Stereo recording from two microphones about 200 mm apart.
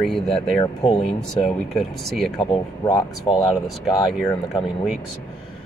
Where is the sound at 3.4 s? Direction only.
Centre (ahead or behind).